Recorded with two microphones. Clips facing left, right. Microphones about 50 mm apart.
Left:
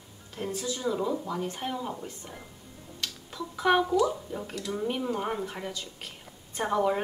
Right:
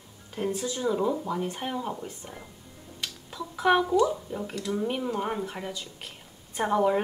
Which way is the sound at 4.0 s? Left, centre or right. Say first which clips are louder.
Right 2 dB; centre.